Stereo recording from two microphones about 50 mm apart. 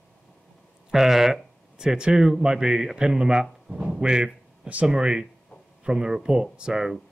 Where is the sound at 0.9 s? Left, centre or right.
Centre.